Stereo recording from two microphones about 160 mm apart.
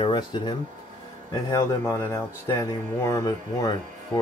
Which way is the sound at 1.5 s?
20° left (ahead or behind).